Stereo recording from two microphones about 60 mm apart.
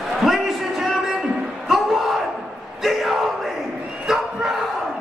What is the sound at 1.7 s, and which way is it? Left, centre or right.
Crowd, centre.